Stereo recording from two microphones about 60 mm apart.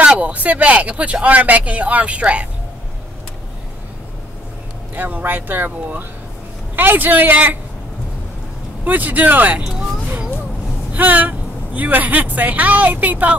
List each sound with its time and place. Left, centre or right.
0.0 s speech: right
4.9 s speech: right
8.8 s speech: right
9.6 s a sound: centre
10.9 s a woman's voice: right